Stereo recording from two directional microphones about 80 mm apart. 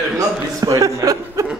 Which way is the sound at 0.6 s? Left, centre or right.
Right.